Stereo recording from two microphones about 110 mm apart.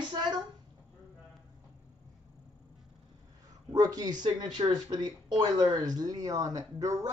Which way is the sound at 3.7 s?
35° right (ahead or behind).